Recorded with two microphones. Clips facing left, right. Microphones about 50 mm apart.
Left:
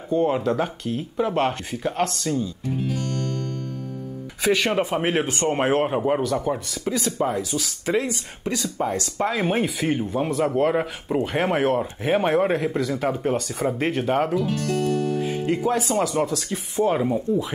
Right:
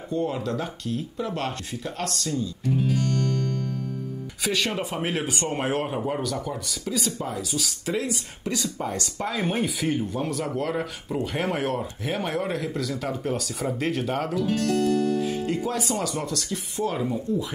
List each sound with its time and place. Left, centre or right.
0.1 s speech: left
2.6 s music: left
4.5 s speech: left
7.3 s speech: centre
7.8 s speech: left
13.2 s speech: centre